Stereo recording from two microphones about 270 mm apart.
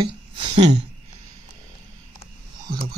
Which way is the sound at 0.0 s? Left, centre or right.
Centre.